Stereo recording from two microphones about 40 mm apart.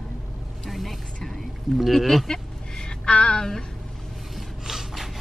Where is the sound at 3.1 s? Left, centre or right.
Centre.